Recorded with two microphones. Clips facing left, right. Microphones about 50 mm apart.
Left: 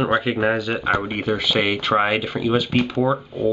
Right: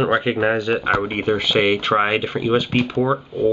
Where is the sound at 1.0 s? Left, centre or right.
Centre.